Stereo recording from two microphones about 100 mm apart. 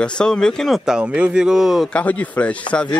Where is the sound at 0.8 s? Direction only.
10° right (ahead or behind).